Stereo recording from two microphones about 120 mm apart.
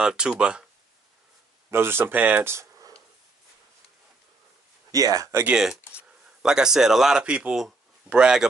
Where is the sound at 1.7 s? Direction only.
20° right (ahead or behind).